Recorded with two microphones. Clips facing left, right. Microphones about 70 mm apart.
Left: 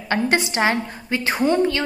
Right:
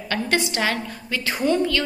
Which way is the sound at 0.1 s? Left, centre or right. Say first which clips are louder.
Left 3 dB; left.